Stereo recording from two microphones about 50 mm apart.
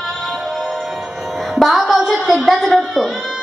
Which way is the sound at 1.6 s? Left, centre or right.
Centre.